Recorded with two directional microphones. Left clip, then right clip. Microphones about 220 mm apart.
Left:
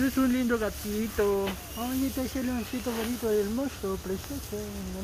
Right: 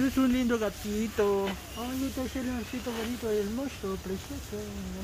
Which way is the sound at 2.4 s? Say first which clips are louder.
Left 3 dB; 50° left (ahead or behind).